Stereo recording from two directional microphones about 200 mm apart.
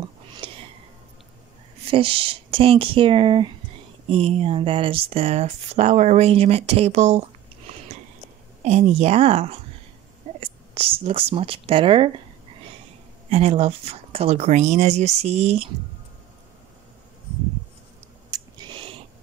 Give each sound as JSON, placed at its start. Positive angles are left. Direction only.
{"t": 0.4, "sound": "sniff", "side_deg": -25}
{"t": 1.9, "sound": "speech", "side_deg": -25}
{"t": 13.3, "sound": "speech", "side_deg": -30}
{"t": 18.3, "sound": "a sound", "side_deg": -20}